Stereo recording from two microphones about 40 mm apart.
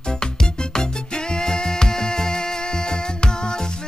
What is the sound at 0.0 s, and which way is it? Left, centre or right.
Music, centre.